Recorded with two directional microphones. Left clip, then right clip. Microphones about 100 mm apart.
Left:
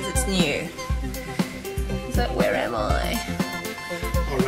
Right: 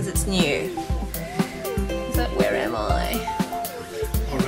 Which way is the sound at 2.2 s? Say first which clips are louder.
Even; 10° left (ahead or behind).